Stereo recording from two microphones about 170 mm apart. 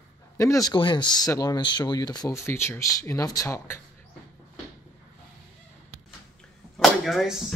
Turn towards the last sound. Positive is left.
turn(degrees=0)  # may be behind; listen again after turning